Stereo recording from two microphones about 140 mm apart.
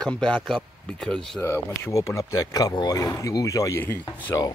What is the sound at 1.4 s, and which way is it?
Speech, 20° left (ahead or behind).